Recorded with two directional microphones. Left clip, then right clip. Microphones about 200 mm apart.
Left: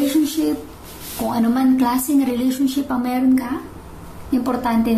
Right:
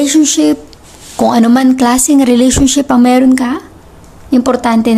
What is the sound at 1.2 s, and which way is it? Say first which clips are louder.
Speech: right 11 dB; 50° right (ahead or behind).